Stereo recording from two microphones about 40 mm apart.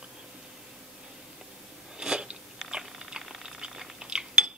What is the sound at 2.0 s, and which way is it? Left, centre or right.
Biting, right.